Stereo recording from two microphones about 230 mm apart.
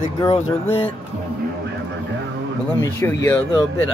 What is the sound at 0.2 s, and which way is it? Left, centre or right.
Speech, left.